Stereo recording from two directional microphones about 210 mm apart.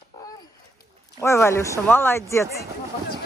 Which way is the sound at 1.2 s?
15° left (ahead or behind).